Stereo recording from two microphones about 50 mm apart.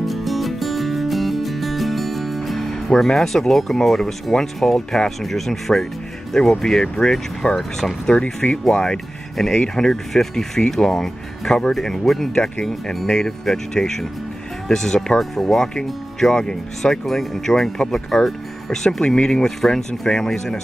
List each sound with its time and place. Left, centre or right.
0.0 s music: centre
6.5 s speech: centre